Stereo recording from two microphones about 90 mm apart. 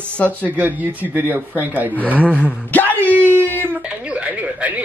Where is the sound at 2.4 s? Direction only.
20° left (ahead or behind).